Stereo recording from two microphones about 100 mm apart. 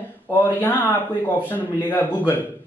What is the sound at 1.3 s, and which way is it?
Speech, 20° left (ahead or behind).